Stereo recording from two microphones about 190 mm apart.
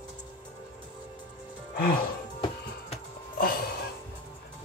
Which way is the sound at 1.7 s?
50° left (ahead or behind).